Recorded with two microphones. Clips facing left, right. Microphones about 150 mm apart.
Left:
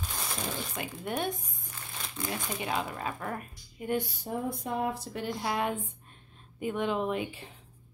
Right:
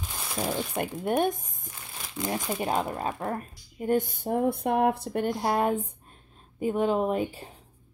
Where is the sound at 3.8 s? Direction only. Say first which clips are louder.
Right 6 dB; 45° right (ahead or behind).